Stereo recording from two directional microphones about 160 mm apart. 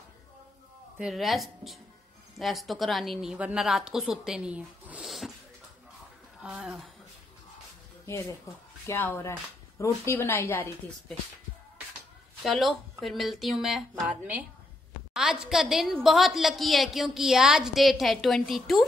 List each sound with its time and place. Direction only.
0.9 s a woman's voice: centre (ahead or behind)
6.4 s a woman's voice: 5° right (ahead or behind)
8.8 s a woman's voice: 15° left (ahead or behind)
12.4 s a woman's voice: centre (ahead or behind)